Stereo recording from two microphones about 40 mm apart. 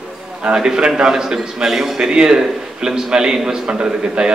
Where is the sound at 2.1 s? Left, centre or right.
Centre.